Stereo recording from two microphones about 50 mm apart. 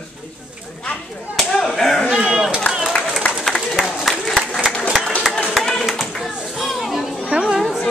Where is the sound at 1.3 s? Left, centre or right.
Centre.